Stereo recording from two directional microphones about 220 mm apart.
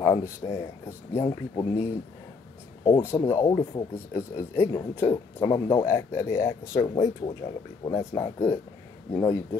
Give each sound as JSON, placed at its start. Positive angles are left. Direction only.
{"t": 0.0, "sound": "speech", "side_deg": 15}
{"t": 3.4, "sound": "speech", "side_deg": 20}
{"t": 3.9, "sound": "speech", "side_deg": 10}